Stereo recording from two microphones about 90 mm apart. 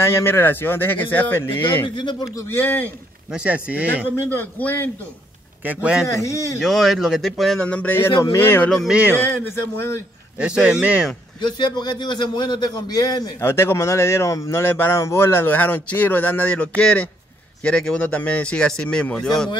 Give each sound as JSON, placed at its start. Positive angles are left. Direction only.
{"t": 0.0, "sound": "speech", "side_deg": 30}
{"t": 3.3, "sound": "speech", "side_deg": -10}
{"t": 4.4, "sound": "speech", "side_deg": 20}
{"t": 5.6, "sound": "speech", "side_deg": -20}
{"t": 6.0, "sound": "a man's voice", "side_deg": 35}
{"t": 6.6, "sound": "speech", "side_deg": 0}
{"t": 7.6, "sound": "speech", "side_deg": 15}
{"t": 8.4, "sound": "speech", "side_deg": 25}
{"t": 8.8, "sound": "speech", "side_deg": -15}
{"t": 9.2, "sound": "speech", "side_deg": 25}
{"t": 10.4, "sound": "speech", "side_deg": -10}
{"t": 11.4, "sound": "a man's voice", "side_deg": 55}
{"t": 13.4, "sound": "speech", "side_deg": 30}